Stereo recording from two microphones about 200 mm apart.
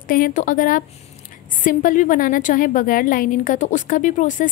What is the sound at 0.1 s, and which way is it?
A woman's voice, 40° left (ahead or behind).